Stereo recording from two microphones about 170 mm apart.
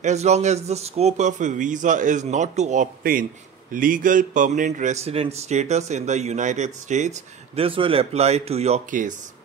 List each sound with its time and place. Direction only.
0.0 s a man's voice: 40° right (ahead or behind)